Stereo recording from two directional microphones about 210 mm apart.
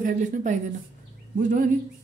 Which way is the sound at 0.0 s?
35° right (ahead or behind).